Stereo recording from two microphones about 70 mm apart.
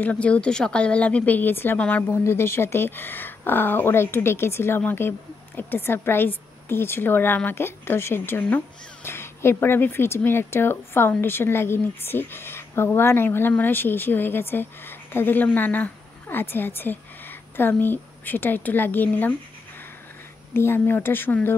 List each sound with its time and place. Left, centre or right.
0.0 s speech: centre
1.8 s speech: left
2.2 s a woman's voice: left
20.5 s a woman's voice: left